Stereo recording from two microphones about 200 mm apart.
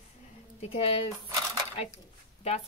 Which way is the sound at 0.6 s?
30° left (ahead or behind).